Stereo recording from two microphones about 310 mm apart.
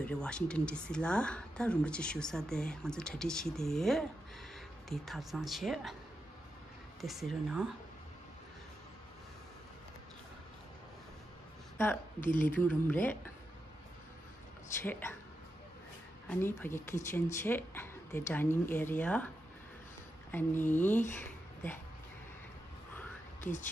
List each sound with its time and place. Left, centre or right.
0.0 s speech: centre
7.0 s speech: centre
12.2 s speech: left
12.4 s speech: centre
14.8 s speech: centre
16.3 s speech: centre
22.9 s whispering: centre